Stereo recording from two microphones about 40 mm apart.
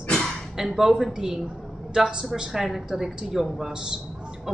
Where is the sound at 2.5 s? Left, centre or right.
Centre; by 4.0 s right.